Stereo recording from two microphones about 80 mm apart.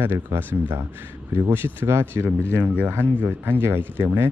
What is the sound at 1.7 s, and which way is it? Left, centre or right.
Speech, right.